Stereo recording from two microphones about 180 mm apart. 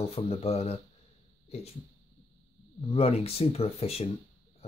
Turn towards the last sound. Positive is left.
turn(degrees=35)  # may be behind; listen again after turning